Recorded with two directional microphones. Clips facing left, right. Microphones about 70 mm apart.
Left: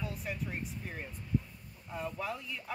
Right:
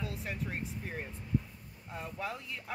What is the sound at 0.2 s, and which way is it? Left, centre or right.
Speech, right.